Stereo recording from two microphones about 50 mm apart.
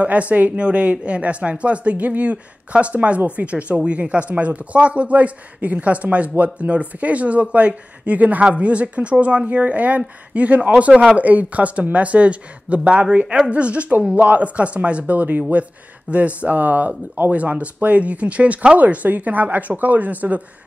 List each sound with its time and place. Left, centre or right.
0.0 s speech: right